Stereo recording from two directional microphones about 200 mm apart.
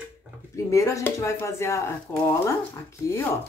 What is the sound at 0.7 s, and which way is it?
A woman's voice, 15° left (ahead or behind).